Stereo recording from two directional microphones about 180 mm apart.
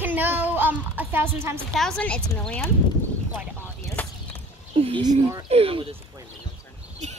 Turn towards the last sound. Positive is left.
turn(degrees=-30)  # may be behind; listen again after turning